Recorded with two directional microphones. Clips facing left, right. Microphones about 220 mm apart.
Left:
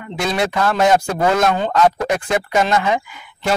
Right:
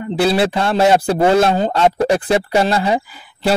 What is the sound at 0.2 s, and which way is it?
Speech, 35° right (ahead or behind).